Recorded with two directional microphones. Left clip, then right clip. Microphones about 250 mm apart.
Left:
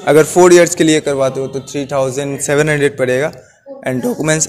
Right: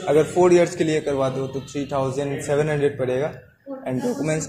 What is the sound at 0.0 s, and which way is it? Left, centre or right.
A man's voice, left.